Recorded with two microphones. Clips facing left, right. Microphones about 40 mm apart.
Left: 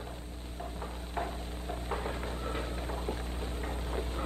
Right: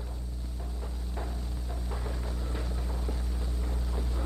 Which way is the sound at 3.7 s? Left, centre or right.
Left.